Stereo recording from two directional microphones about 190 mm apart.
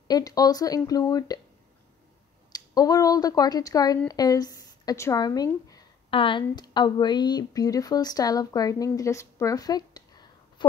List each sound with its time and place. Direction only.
0.1 s speech: 20° left (ahead or behind)
2.5 s speech: 20° left (ahead or behind)